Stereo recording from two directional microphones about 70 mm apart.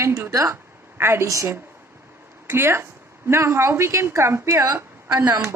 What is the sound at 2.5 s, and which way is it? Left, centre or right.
A woman's voice, right.